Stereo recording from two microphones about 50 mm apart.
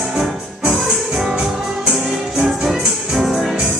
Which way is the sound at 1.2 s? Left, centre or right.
Right.